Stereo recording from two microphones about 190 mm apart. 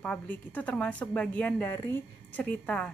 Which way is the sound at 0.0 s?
10° left (ahead or behind).